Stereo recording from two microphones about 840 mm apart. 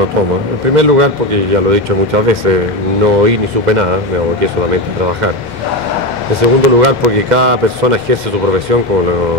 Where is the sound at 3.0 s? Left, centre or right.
Right.